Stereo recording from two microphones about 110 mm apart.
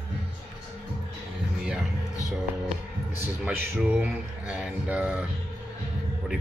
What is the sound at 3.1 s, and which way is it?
A man's voice, 20° right (ahead or behind).